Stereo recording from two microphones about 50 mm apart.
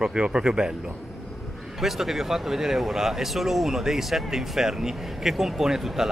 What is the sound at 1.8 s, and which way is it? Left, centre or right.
Speech, centre.